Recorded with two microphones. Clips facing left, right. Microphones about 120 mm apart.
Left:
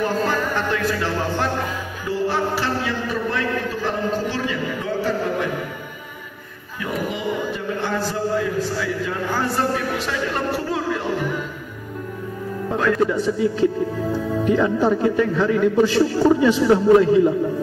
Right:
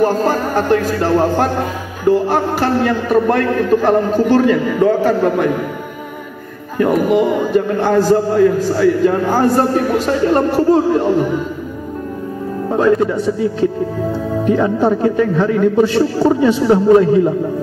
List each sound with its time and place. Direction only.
0.0 s a man's voice: 40° right (ahead or behind)
6.8 s a man's voice: 55° right (ahead or behind); by 11.2 s 40° right (ahead or behind)
12.6 s a man's voice: 25° right (ahead or behind)
14.4 s a man's voice: 25° right (ahead or behind)